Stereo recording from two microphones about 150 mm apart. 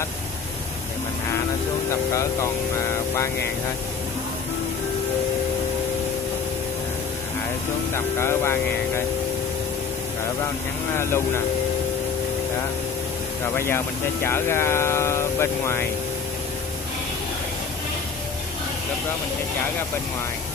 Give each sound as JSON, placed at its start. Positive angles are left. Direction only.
{"t": 7.9, "sound": "speech", "side_deg": 15}
{"t": 11.0, "sound": "speech", "side_deg": 15}
{"t": 13.6, "sound": "speech", "side_deg": 15}